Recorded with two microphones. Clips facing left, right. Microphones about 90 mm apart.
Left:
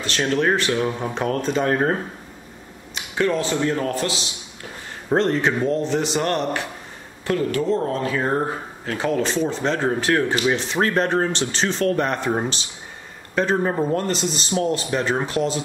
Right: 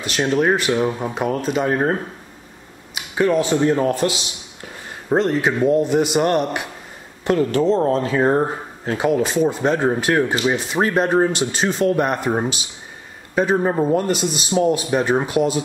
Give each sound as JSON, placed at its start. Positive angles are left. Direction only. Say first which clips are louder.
{"t": 0.0, "sound": "speech", "louder": "right 2 dB", "side_deg": -15}
{"t": 5.1, "sound": "speech", "louder": "right 1 dB", "side_deg": -5}
{"t": 7.2, "sound": "speech", "louder": "right 4 dB", "side_deg": -25}